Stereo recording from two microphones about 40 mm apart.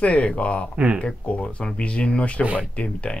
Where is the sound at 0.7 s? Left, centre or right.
Right.